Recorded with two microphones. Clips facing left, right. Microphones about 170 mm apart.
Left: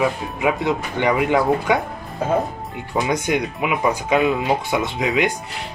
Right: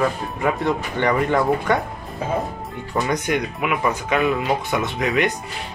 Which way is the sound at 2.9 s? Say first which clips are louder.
Left 1 dB; 15° left (ahead or behind).